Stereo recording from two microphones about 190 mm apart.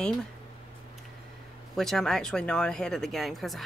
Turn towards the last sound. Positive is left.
turn(degrees=0)  # may be behind; listen again after turning